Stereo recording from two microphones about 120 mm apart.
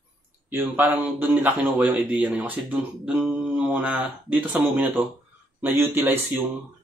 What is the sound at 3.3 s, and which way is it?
Mantra, 10° right (ahead or behind).